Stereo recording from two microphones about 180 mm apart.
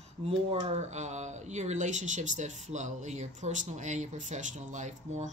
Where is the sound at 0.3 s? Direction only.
35° right (ahead or behind).